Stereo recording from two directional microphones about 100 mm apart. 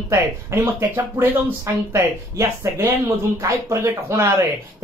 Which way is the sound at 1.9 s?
30° right (ahead or behind).